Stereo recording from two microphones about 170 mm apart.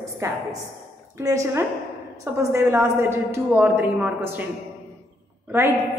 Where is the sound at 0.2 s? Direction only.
20° right (ahead or behind).